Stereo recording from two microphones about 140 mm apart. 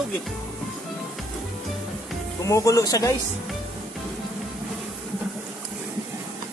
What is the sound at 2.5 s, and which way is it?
Speech, 25° left (ahead or behind).